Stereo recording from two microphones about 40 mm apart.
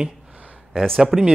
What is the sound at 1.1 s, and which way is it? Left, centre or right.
Speech, centre.